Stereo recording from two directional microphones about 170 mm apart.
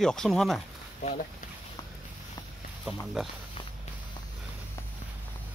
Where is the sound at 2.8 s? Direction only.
5° right (ahead or behind).